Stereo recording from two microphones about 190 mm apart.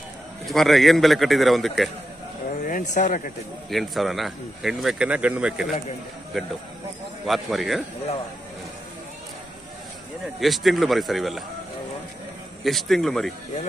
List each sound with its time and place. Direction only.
0.5 s speech: centre (ahead or behind)
2.6 s speech: 45° left (ahead or behind)
3.7 s speech: centre (ahead or behind)
10.4 s speech: centre (ahead or behind)
12.6 s speech: centre (ahead or behind)